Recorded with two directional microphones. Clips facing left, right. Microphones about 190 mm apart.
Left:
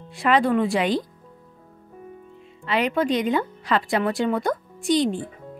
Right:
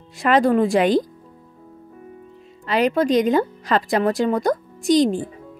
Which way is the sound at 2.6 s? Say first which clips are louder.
Right 4 dB; 40° right (ahead or behind).